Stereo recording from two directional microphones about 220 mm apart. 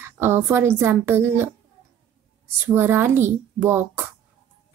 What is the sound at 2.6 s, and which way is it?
A child's voice, 10° right (ahead or behind).